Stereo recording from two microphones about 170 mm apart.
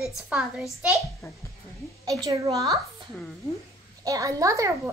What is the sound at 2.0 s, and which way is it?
Speech, 20° right (ahead or behind).